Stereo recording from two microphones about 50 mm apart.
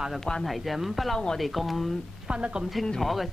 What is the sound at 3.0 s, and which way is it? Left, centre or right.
Speech, centre.